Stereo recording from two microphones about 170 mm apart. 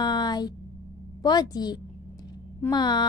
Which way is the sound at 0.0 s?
25° left (ahead or behind).